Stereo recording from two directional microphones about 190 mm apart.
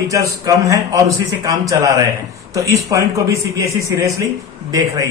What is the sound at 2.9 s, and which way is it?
A man's voice, 15° right (ahead or behind).